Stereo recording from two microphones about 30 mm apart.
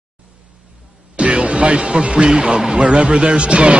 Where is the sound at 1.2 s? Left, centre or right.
Right.